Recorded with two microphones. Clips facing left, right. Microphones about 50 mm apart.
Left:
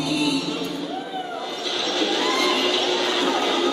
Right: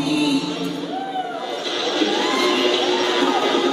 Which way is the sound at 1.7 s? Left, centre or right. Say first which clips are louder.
Right 3 dB; centre.